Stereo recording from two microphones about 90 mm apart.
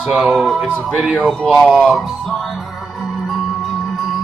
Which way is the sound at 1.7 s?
10° right (ahead or behind).